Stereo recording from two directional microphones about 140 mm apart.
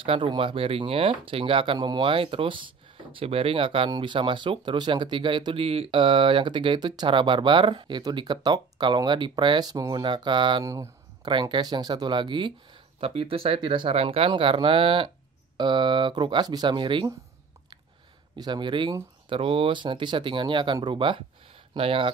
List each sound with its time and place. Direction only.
0.0 s speech: 40° right (ahead or behind)
10.6 s speech: 25° right (ahead or behind)
18.4 s speech: 35° right (ahead or behind)